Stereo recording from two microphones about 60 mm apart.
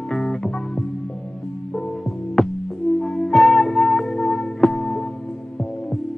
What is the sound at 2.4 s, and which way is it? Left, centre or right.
Music, centre.